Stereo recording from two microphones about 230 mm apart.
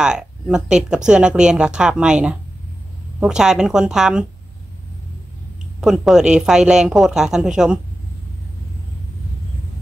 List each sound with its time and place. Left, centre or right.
0.0 s speech: centre
5.8 s speech: centre